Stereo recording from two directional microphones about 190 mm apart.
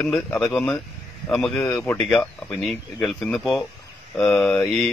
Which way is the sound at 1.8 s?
10° left (ahead or behind).